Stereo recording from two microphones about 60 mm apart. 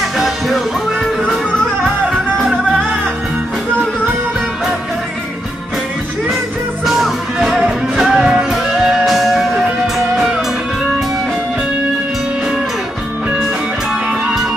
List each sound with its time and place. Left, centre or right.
7.0 s music: centre